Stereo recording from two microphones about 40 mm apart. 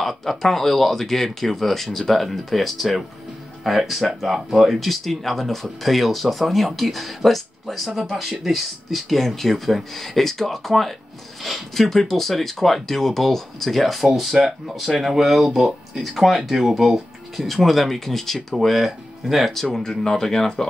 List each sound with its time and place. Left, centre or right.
0.0 s speech: centre
7.9 s speech: centre
8.5 s speech: centre
19.5 s speech: centre